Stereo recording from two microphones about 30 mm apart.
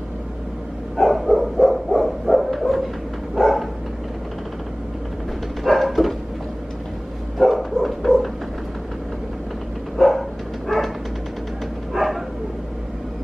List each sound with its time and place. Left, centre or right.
0.9 s bow-wow: centre
3.3 s dog: centre
5.6 s bow-wow: centre
7.3 s bow-wow: centre
9.9 s dog: centre
11.9 s bow-wow: centre